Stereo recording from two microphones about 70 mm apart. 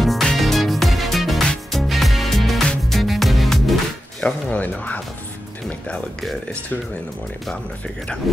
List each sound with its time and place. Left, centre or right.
0.0 s music: centre
4.2 s speech: left